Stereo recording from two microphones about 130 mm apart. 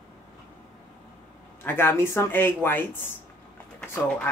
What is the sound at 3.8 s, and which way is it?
Speech, 15° left (ahead or behind).